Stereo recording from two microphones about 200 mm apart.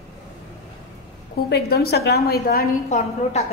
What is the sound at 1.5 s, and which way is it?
A woman's voice, 50° left (ahead or behind).